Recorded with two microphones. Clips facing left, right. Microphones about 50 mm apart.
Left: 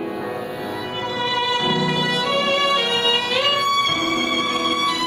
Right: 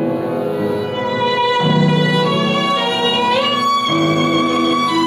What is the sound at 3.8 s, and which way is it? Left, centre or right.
Violin, centre.